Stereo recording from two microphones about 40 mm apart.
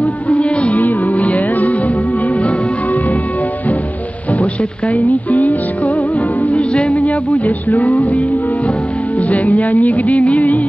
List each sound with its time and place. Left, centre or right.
0.0 s music: left
4.3 s music: left